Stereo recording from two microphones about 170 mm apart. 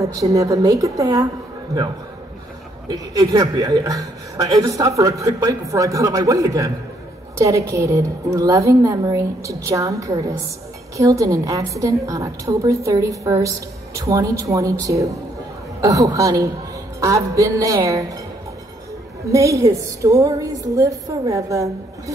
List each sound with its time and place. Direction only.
0.0 s a woman's voice: 20° right (ahead or behind)
2.9 s a woman's voice: 20° right (ahead or behind)
19.2 s a woman's voice: 20° right (ahead or behind)